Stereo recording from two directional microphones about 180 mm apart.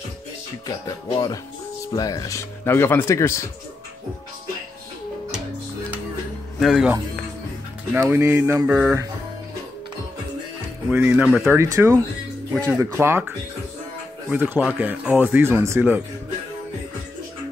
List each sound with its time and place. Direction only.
0.7 s speech: 20° left (ahead or behind)
6.6 s speech: 5° right (ahead or behind)
10.9 s speech: 10° right (ahead or behind)
14.3 s speech: 10° right (ahead or behind)